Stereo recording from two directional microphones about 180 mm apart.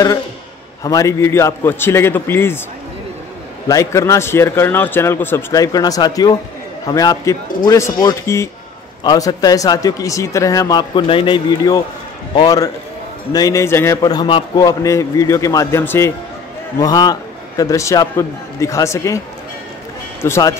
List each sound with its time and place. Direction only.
0.8 s a man's voice: 20° left (ahead or behind)
3.6 s a man's voice: 15° left (ahead or behind)